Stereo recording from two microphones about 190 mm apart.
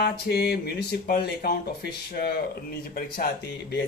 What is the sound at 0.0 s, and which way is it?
Speech, 55° left (ahead or behind).